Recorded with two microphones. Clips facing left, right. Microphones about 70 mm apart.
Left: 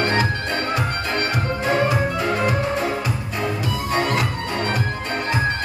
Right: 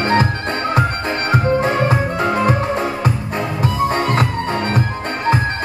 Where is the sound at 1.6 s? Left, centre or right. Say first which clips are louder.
Right 2 dB; right.